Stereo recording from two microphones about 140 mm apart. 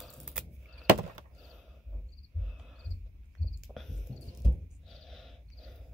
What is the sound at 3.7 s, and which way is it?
Cricket, centre (ahead or behind).